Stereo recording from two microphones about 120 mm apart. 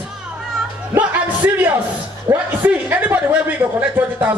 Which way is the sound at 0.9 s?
15° right (ahead or behind).